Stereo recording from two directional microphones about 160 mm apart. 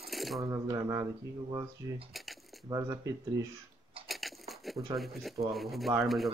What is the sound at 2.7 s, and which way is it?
Speech, 20° right (ahead or behind).